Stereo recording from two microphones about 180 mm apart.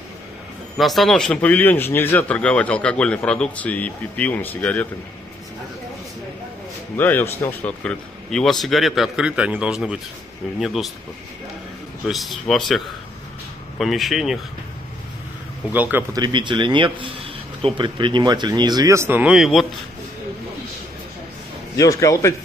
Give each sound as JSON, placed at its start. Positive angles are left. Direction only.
{"t": 0.7, "sound": "speech", "side_deg": 0}
{"t": 7.0, "sound": "speech", "side_deg": 10}
{"t": 12.1, "sound": "speech", "side_deg": 0}
{"t": 15.7, "sound": "speech", "side_deg": -10}
{"t": 21.7, "sound": "speech", "side_deg": 20}